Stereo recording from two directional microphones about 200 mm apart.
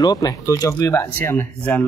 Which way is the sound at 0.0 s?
20° left (ahead or behind).